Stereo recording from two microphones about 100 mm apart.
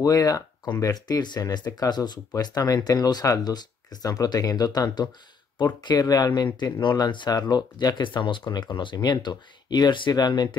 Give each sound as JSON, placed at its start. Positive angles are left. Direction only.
{"t": 0.0, "sound": "speech", "side_deg": 35}